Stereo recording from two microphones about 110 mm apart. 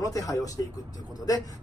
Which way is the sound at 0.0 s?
30° left (ahead or behind).